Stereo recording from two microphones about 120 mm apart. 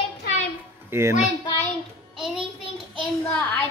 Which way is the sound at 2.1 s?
5° right (ahead or behind).